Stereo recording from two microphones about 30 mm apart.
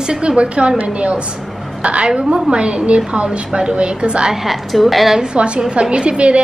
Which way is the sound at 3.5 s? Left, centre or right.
Right.